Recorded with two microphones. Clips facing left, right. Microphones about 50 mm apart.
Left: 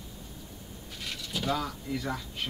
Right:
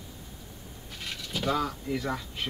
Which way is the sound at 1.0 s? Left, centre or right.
Centre.